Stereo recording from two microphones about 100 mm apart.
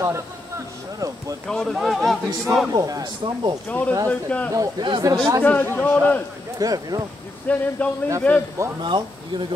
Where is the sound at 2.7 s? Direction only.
40° right (ahead or behind).